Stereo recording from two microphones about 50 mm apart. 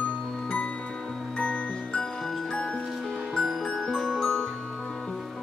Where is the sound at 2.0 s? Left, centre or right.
Centre.